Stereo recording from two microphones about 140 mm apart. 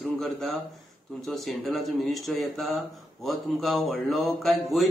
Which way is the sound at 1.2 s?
Centre (ahead or behind).